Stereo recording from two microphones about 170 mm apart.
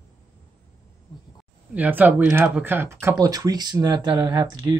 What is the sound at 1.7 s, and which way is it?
Speech, 10° right (ahead or behind).